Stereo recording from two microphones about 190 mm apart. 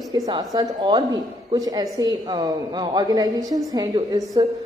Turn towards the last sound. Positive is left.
turn(degrees=-20)  # may be behind; listen again after turning